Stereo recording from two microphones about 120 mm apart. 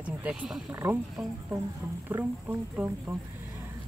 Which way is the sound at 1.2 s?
5° right (ahead or behind).